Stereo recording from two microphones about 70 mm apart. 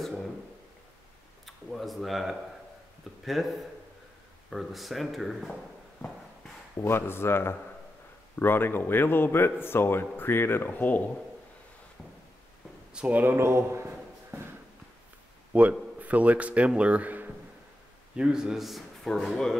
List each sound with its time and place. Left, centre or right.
0.0 s a sound: centre
1.4 s a sound: centre
3.3 s speech: centre
6.8 s a man's voice: left
12.9 s speech: centre
13.4 s a man's voice: right
15.5 s a man's voice: right
18.1 s a man's voice: centre